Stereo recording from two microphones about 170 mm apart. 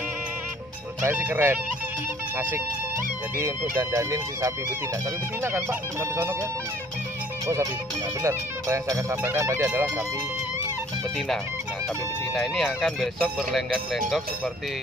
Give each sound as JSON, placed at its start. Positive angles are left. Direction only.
{"t": 1.0, "sound": "speech", "side_deg": -10}
{"t": 3.3, "sound": "speech", "side_deg": -15}
{"t": 8.2, "sound": "speech", "side_deg": -15}
{"t": 12.4, "sound": "speech", "side_deg": 0}